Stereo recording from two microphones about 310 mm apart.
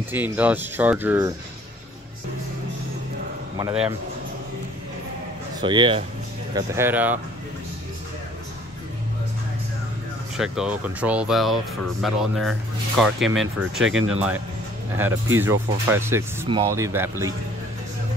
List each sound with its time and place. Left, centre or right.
0.1 s speech: centre
3.5 s speech: centre
5.6 s speech: centre
10.3 s speech: centre
13.8 s speech: right
15.3 s speech: centre